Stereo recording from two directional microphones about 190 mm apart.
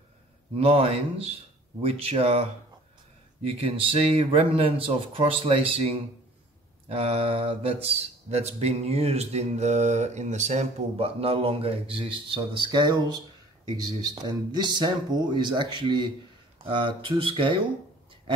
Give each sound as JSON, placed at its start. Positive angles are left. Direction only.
{"t": 0.6, "sound": "speech", "side_deg": -30}
{"t": 3.4, "sound": "speech", "side_deg": -30}